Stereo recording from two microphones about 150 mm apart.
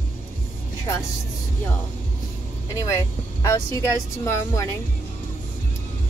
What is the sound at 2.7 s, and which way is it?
Speech, 20° left (ahead or behind).